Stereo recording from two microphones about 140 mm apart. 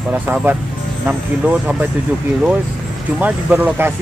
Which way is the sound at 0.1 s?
15° right (ahead or behind).